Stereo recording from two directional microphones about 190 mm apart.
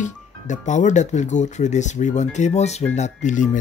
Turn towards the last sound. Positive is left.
turn(degrees=40)  # may be behind; listen again after turning